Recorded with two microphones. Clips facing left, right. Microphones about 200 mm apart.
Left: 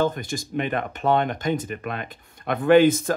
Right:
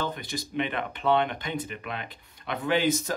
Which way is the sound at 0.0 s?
45° left (ahead or behind).